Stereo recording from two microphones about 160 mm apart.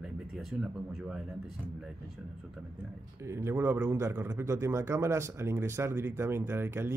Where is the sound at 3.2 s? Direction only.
15° right (ahead or behind).